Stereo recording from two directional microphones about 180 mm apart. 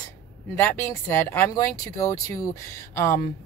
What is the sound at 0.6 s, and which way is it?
Speech, 15° left (ahead or behind).